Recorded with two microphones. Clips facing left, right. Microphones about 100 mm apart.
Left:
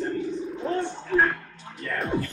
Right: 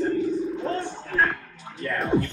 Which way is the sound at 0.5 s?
Centre (ahead or behind).